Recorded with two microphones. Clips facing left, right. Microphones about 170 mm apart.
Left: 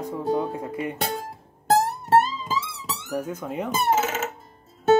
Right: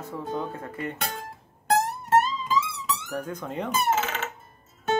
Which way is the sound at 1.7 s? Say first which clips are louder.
Left 3 dB; 35° left (ahead or behind).